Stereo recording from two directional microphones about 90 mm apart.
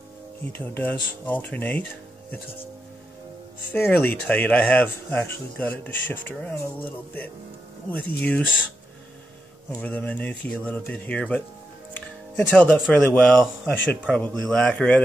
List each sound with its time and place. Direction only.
0.5 s speech: 20° left (ahead or behind)
3.7 s speech: 20° left (ahead or behind)
7.9 s speech: 15° left (ahead or behind)
9.8 s speech: 15° left (ahead or behind)
11.9 s music: 15° left (ahead or behind)
13.1 s speech: 10° left (ahead or behind)